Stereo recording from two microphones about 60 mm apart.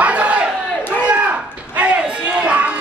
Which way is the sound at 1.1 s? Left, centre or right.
Right.